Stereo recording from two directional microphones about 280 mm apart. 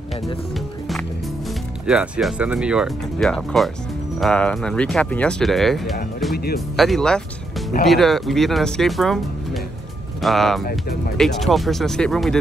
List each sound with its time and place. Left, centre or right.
1.9 s speech: centre
6.3 s speech: left
6.8 s speech: centre
10.6 s speech: left
11.1 s speech: centre